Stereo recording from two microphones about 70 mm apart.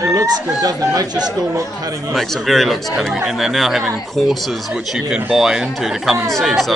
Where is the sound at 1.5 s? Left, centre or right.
Right.